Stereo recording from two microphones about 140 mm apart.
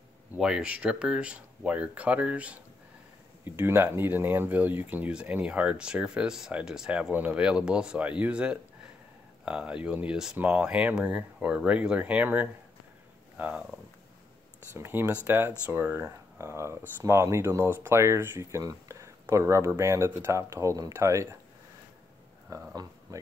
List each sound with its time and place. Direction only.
0.4 s speech: 5° right (ahead or behind)
14.8 s speech: 15° right (ahead or behind)
22.5 s speech: 25° right (ahead or behind)